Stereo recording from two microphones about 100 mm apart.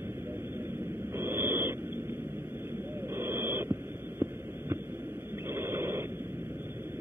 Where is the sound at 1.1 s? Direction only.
25° right (ahead or behind).